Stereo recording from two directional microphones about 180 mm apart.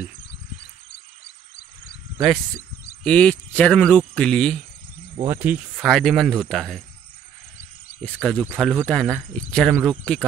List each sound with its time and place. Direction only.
1.2 s squeal: 60° left (ahead or behind)
3.0 s speech: 5° left (ahead or behind)
5.2 s speech: 10° right (ahead or behind)
8.0 s speech: 5° left (ahead or behind)